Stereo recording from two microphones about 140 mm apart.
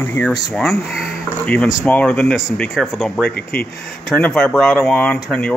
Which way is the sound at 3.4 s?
90° left.